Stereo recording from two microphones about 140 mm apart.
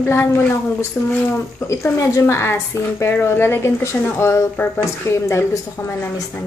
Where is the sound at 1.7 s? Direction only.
20° left (ahead or behind).